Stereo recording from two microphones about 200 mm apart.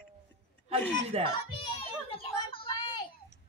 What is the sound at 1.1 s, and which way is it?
Speech, 30° right (ahead or behind).